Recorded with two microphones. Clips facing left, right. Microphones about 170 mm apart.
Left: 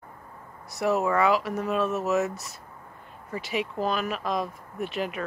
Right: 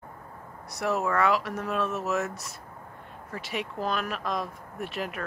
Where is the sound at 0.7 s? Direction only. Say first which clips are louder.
Left 3 dB; centre (ahead or behind).